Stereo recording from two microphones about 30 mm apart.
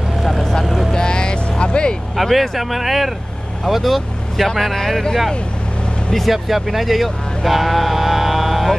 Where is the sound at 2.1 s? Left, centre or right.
Centre.